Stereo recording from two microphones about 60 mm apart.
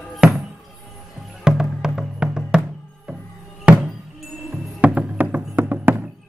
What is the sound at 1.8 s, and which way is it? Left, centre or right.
Music, centre.